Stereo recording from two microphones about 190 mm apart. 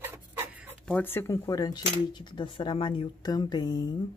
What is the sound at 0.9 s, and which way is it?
Speech, 10° left (ahead or behind).